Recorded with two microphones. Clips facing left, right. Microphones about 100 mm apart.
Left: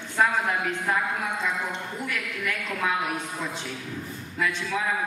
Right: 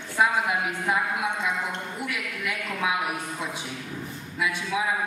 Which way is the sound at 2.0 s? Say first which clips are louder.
Left 1 dB; 10° right (ahead or behind).